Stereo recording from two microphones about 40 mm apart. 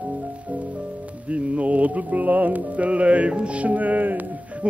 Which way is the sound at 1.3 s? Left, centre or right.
Right.